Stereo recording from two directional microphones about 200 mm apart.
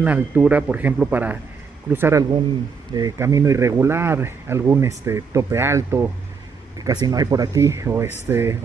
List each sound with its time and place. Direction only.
0.0 s speech: 10° right (ahead or behind)